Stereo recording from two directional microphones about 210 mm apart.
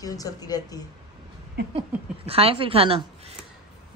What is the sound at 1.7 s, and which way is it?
Speech, 25° right (ahead or behind).